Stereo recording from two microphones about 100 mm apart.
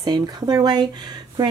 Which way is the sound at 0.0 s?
40° right (ahead or behind).